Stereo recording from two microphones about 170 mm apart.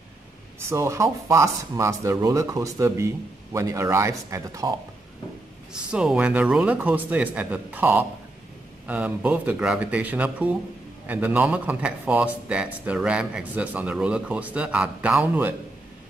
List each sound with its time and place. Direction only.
0.6 s a man's voice: 15° right (ahead or behind)
5.7 s a man's voice: 5° right (ahead or behind)